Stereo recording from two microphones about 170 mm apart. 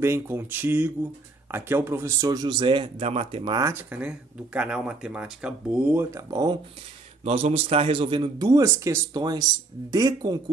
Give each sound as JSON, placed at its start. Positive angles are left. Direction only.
{"t": 0.0, "sound": "a man's voice", "side_deg": -15}
{"t": 3.5, "sound": "speech", "side_deg": -15}
{"t": 7.2, "sound": "a man's voice", "side_deg": -35}